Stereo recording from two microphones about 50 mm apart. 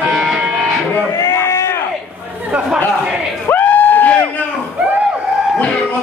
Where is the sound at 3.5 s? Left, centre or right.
Left.